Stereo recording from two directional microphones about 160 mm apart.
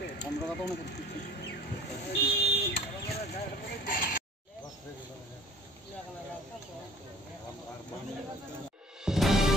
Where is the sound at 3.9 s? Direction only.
60° left (ahead or behind).